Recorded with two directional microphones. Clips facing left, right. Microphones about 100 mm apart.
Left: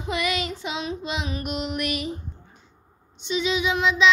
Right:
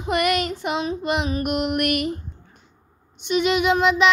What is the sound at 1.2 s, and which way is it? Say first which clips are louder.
Music: right 6 dB; 40° right (ahead or behind).